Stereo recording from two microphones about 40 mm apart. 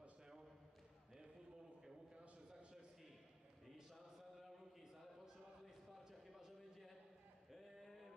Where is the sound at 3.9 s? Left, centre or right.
Centre.